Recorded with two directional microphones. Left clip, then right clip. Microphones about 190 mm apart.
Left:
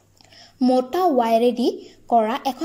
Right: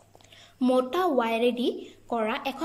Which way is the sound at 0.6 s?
25° left (ahead or behind).